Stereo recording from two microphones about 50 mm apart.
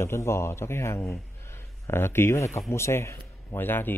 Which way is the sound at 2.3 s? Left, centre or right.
Left.